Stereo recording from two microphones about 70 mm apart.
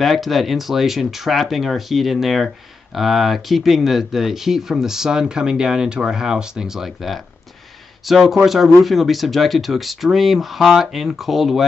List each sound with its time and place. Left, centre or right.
0.0 s speech: centre